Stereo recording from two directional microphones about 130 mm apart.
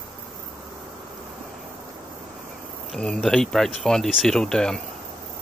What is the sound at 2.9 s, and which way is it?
Speech, 5° left (ahead or behind).